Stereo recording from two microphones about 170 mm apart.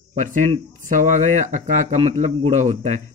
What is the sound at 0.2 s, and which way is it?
Speech, 50° right (ahead or behind).